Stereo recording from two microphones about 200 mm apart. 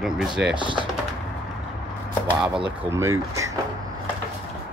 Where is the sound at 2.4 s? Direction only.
5° right (ahead or behind).